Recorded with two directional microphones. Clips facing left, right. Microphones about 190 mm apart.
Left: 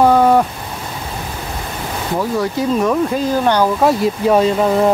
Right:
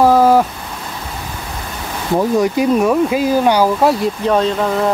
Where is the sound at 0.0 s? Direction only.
Centre (ahead or behind).